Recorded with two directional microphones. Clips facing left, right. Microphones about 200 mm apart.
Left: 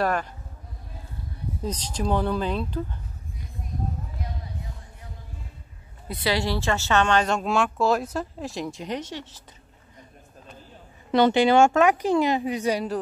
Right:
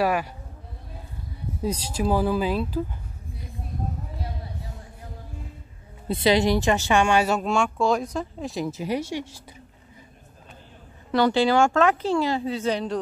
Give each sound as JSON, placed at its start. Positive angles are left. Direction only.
{"t": 0.0, "sound": "a woman's voice", "side_deg": -10}
{"t": 1.6, "sound": "speech", "side_deg": -10}
{"t": 6.0, "sound": "a woman's voice", "side_deg": -25}
{"t": 11.1, "sound": "speech", "side_deg": 20}